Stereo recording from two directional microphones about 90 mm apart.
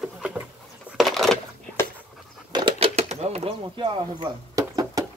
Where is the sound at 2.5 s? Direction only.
70° right (ahead or behind).